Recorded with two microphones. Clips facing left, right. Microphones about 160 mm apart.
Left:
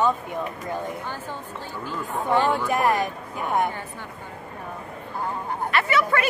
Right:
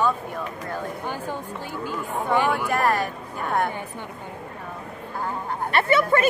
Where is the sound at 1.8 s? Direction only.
15° right (ahead or behind).